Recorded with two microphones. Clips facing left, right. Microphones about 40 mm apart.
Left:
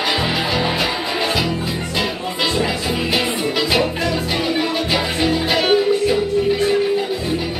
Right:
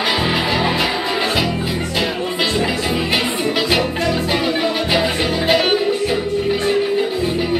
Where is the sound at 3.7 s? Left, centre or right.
Centre.